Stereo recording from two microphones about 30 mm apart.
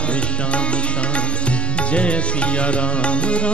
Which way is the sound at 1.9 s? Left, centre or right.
Left.